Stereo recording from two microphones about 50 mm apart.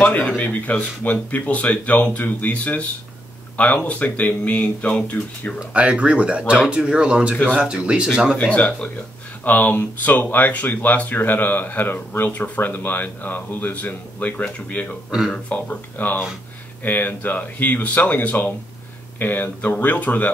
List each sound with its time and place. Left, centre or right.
0.4 s speech: left
5.6 s speech: right
8.4 s speech: left
9.4 s speech: left
15.0 s speech: centre
15.5 s speech: left